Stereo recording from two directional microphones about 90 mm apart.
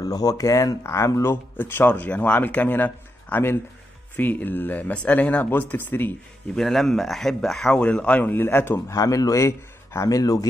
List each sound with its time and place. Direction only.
0.0 s speech: 45° left (ahead or behind); by 6.1 s 20° left (ahead or behind)
6.5 s speech: 5° left (ahead or behind)
7.8 s speech: 15° left (ahead or behind)
8.9 s speech: 40° left (ahead or behind)